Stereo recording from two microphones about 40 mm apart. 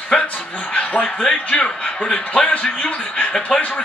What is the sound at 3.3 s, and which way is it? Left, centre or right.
Speech, left.